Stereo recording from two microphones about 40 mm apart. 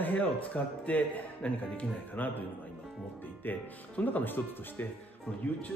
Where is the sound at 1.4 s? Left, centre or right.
Left.